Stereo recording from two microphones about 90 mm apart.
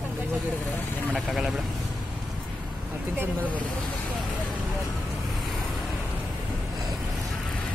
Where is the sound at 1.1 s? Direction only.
5° right (ahead or behind).